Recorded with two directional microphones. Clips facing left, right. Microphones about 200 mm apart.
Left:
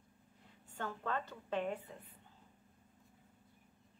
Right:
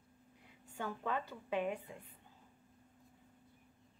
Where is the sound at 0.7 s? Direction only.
10° right (ahead or behind).